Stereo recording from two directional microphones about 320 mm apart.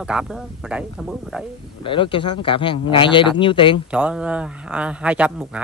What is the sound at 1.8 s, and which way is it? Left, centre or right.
Speech, centre.